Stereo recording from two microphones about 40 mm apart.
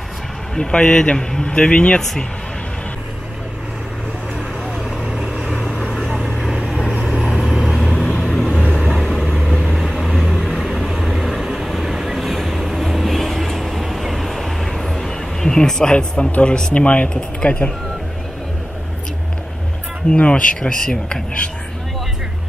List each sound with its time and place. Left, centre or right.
0.6 s speech: left
2.0 s speech: centre
5.1 s vehicle: centre
6.9 s vehicle: centre
7.8 s vehicle: centre
16.4 s speech: centre
16.7 s speech: left
20.1 s speech: left
20.6 s speech: centre